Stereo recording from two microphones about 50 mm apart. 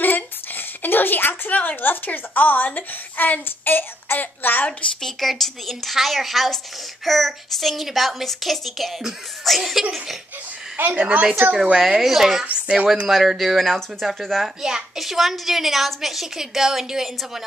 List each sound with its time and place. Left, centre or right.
0.0 s a woman's voice: left
5.0 s a woman's voice: centre
10.9 s a woman's voice: right
11.7 s speech: centre
12.4 s a woman's voice: right
13.1 s a woman's voice: centre
14.6 s a woman's voice: centre